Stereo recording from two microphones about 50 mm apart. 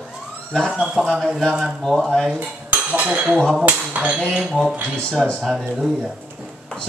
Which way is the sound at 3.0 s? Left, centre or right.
Right.